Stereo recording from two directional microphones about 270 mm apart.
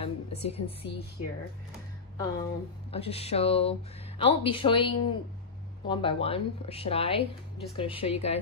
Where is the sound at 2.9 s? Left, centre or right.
Left.